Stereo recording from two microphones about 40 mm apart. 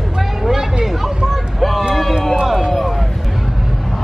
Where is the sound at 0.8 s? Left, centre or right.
Centre.